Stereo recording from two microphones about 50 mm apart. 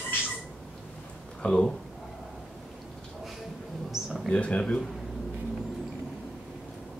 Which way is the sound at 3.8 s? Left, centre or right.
Centre.